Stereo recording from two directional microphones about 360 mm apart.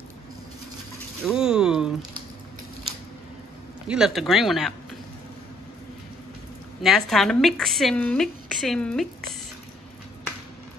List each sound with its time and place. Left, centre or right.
1.2 s a sound: centre
3.8 s a woman's voice: centre
6.8 s a woman's voice: centre